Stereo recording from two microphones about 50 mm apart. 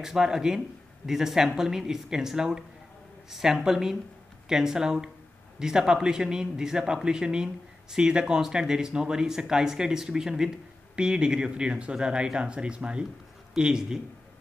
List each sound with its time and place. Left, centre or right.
0.0 s speech: centre